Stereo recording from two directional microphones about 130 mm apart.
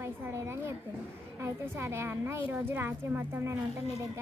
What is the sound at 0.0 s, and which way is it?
A child's voice, 20° right (ahead or behind).